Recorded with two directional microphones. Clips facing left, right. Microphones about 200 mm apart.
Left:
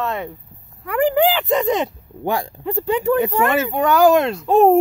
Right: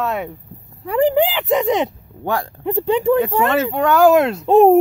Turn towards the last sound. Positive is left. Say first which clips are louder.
# right 3 dB
turn(degrees=-25)  # may be behind; listen again after turning